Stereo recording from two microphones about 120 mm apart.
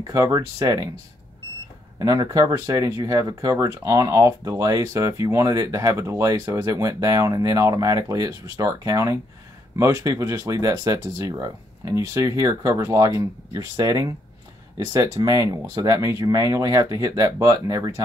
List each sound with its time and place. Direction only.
0.0 s speech: 25° right (ahead or behind)
2.0 s speech: 30° right (ahead or behind)